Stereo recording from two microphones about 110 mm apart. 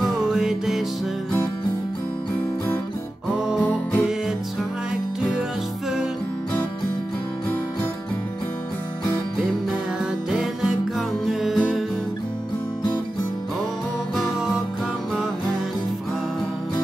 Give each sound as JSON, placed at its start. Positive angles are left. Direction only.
{"t": 0.0, "sound": "music", "side_deg": -5}
{"t": 10.3, "sound": "music", "side_deg": -5}
{"t": 14.1, "sound": "music", "side_deg": -5}